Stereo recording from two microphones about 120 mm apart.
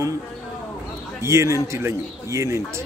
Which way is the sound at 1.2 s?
25° right (ahead or behind).